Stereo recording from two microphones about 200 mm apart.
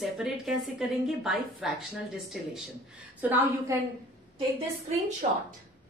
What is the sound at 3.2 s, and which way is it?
Speech, 10° right (ahead or behind).